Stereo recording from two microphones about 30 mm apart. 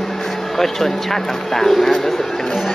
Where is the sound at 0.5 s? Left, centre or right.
Centre.